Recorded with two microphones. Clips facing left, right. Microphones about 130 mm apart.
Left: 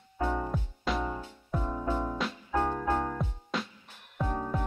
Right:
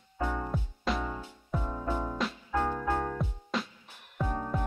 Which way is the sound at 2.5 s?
15° left (ahead or behind).